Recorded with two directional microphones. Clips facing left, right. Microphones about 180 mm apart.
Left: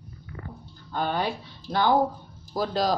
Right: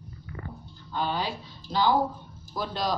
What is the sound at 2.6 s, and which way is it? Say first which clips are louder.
Speech: left 5 dB; 40° left (ahead or behind).